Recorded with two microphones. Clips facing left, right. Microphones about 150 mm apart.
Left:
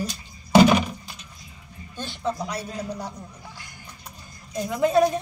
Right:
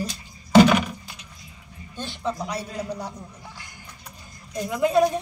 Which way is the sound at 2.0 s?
25° right (ahead or behind).